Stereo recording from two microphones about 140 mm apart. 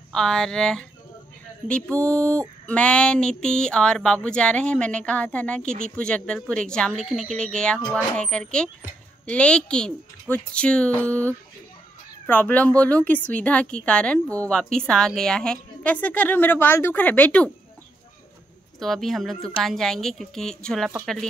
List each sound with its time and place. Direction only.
0.1 s speech: 5° left (ahead or behind)
2.0 s speech: 20° right (ahead or behind)
2.6 s speech: 10° left (ahead or behind)
18.8 s speech: centre (ahead or behind)